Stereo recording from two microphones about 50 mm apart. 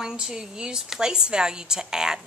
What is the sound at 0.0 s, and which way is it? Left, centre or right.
A woman's voice, centre.